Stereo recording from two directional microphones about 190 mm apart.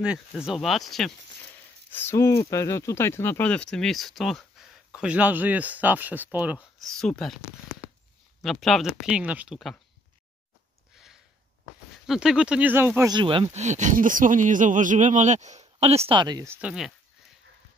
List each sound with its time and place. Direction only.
0.5 s speech: centre (ahead or behind)
1.9 s speech: 10° left (ahead or behind)
12.1 s speech: 5° right (ahead or behind)
13.1 s speech: 25° right (ahead or behind)
16.6 s speech: centre (ahead or behind)